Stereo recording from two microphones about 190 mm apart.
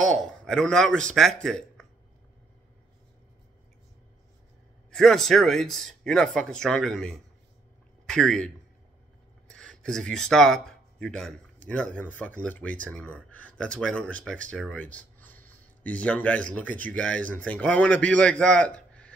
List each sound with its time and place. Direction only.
0.0 s speech: centre (ahead or behind)
4.9 s speech: centre (ahead or behind)
9.5 s a man's voice: 5° left (ahead or behind)